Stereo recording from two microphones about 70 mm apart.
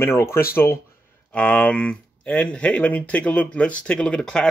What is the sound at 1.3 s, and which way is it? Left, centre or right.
Speech, centre.